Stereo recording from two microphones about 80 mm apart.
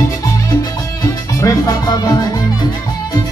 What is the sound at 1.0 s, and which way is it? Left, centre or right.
Music, left.